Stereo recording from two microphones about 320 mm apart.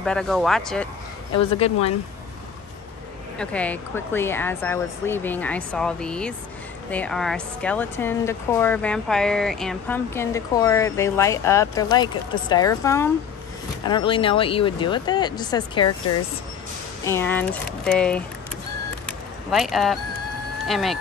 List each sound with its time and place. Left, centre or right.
0.0 s speech: centre
1.3 s speech: centre
3.3 s speech: centre
17.0 s speech: centre
19.5 s speech: centre